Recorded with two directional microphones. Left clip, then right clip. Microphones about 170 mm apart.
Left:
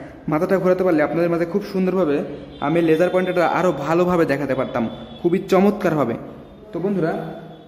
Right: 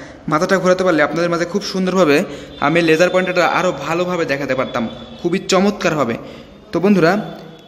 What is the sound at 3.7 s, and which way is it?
A man's voice, 20° left (ahead or behind).